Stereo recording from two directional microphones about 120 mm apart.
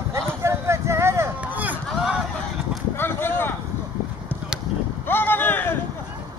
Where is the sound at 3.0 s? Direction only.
20° left (ahead or behind).